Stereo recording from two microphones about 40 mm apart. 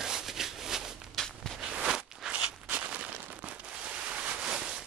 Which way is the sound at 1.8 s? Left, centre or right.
Centre.